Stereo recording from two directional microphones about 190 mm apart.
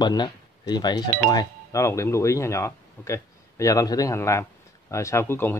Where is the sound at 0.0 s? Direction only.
20° left (ahead or behind).